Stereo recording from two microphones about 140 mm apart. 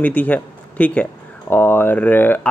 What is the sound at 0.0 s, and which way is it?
A man's voice, 10° left (ahead or behind).